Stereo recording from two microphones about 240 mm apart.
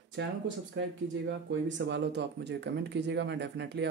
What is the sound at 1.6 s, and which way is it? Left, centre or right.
Speech, right.